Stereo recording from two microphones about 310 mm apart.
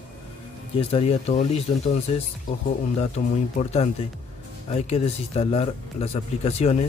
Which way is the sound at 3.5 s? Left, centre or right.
Centre.